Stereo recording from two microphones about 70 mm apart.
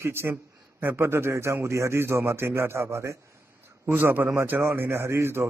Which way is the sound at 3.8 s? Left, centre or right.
Right.